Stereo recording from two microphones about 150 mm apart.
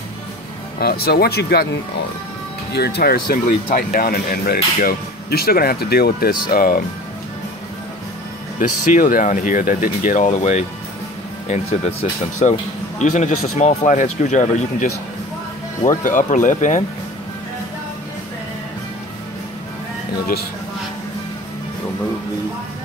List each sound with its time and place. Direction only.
0.7 s speech: 90° left
2.7 s speech: 90° left
3.6 s speech: 65° left (ahead or behind); by 6.8 s 80° left
8.5 s speech: 65° left (ahead or behind)